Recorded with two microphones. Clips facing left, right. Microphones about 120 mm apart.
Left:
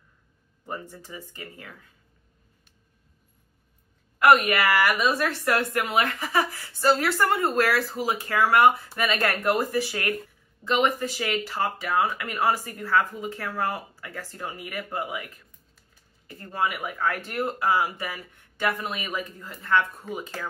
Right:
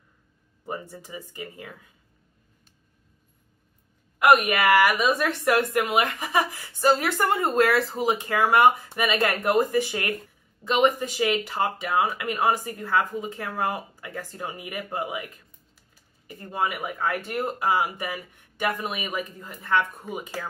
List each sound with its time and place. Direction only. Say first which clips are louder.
0.7 s speech: right 2 dB; 15° right (ahead or behind)
4.2 s speech: even; 15° right (ahead or behind)